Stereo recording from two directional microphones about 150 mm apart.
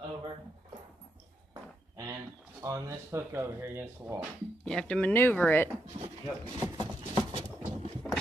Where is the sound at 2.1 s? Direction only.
20° right (ahead or behind).